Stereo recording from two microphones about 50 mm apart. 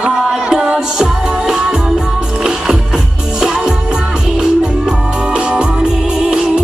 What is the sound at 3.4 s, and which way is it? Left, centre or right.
Music, centre.